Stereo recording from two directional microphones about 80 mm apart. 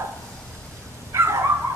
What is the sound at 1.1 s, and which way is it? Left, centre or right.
Dog, right.